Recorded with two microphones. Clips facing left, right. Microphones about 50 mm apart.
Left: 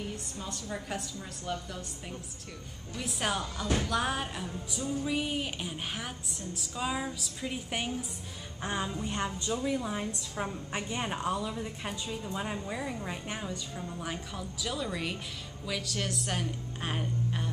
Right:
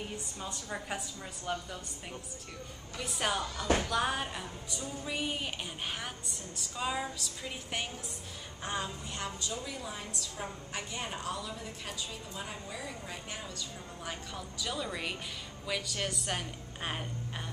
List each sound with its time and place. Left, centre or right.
0.4 s a woman's voice: centre
3.0 s speech: centre
8.6 s a sound: centre
9.0 s a woman's voice: left; by 17.5 s centre